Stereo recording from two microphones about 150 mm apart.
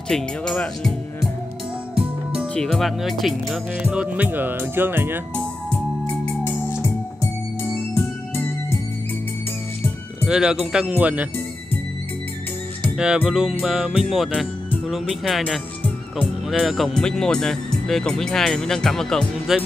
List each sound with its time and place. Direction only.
0.1 s music: 5° left (ahead or behind)
2.4 s speech: 5° left (ahead or behind); by 5.2 s 15° right (ahead or behind)
5.3 s organ: 10° left (ahead or behind)
7.9 s music: 15° left (ahead or behind)
10.2 s speech: 5° right (ahead or behind)
12.9 s speech: 5° right (ahead or behind)